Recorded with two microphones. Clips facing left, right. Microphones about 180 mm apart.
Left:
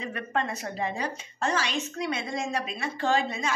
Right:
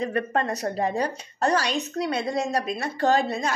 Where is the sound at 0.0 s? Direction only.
40° right (ahead or behind).